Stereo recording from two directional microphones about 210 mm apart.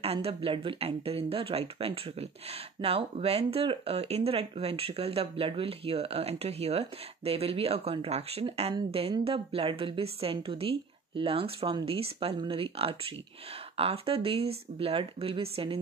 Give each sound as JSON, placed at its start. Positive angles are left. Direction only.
{"t": 0.0, "sound": "speech", "side_deg": -30}